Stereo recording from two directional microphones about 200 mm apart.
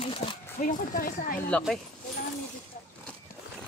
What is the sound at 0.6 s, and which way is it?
Speech, 40° left (ahead or behind).